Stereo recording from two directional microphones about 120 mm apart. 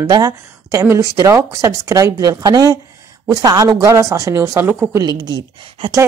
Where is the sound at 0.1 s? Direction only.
30° right (ahead or behind).